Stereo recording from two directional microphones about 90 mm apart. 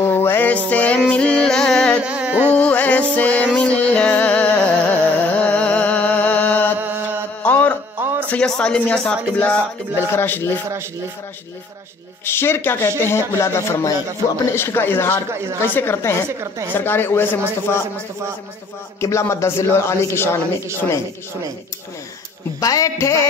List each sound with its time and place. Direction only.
0.0 s music: 25° left (ahead or behind); by 2.0 s 5° left (ahead or behind)
2.0 s carnatic music: 10° right (ahead or behind)
2.5 s music: 15° left (ahead or behind)
8.0 s music: 25° right (ahead or behind)
8.3 s speech: 10° left (ahead or behind)
9.9 s speech: 25° left (ahead or behind)
12.3 s speech: 25° left (ahead or behind)
18.9 s a man's voice: 35° left (ahead or behind)
22.6 s a man's voice: 40° left (ahead or behind)